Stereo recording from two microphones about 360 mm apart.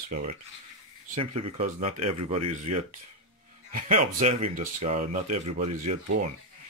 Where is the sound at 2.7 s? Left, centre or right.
Right.